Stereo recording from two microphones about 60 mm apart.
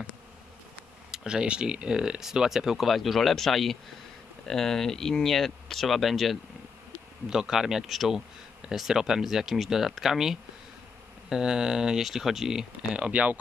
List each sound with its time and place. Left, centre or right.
1.1 s speech: centre
12.9 s speech: right